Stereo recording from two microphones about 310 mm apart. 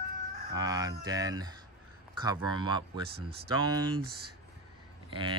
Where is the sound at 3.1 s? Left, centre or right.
Right.